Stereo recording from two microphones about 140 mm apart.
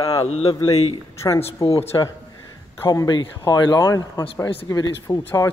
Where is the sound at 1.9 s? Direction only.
30° left (ahead or behind).